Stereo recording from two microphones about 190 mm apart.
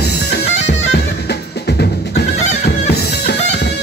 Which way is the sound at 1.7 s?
60° left (ahead or behind).